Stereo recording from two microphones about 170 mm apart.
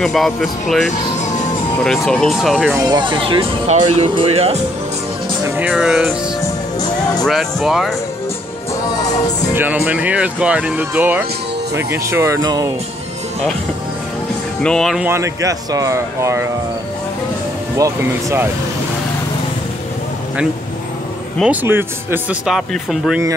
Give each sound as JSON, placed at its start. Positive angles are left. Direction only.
{"t": 0.0, "sound": "speech", "side_deg": 0}
{"t": 2.7, "sound": "speech", "side_deg": -20}
{"t": 5.6, "sound": "speech", "side_deg": -5}
{"t": 7.2, "sound": "speech", "side_deg": 0}
{"t": 9.5, "sound": "speech", "side_deg": -10}
{"t": 14.6, "sound": "speech", "side_deg": 5}
{"t": 15.0, "sound": "speech", "side_deg": -15}
{"t": 17.7, "sound": "speech", "side_deg": -15}
{"t": 21.4, "sound": "speech", "side_deg": -10}
{"t": 22.5, "sound": "speech", "side_deg": 0}